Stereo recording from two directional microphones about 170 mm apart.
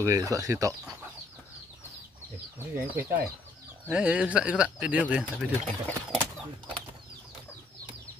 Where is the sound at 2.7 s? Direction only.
10° right (ahead or behind).